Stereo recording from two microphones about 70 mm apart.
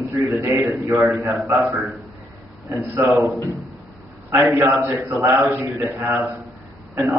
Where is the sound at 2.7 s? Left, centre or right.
Right.